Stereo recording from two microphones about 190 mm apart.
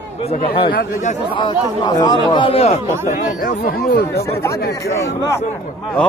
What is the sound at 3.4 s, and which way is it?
Speech, 50° left (ahead or behind).